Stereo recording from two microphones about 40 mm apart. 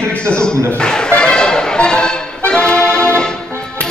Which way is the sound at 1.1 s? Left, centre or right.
Left.